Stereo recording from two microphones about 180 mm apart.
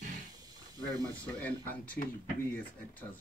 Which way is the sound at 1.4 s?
10° left (ahead or behind).